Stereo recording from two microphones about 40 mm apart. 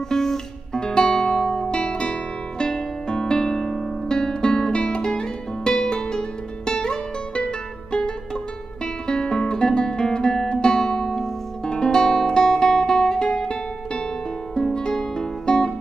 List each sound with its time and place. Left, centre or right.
0.1 s music: centre
0.7 s guitar: left
2.6 s music: centre
9.0 s guitar: left
14.5 s music: centre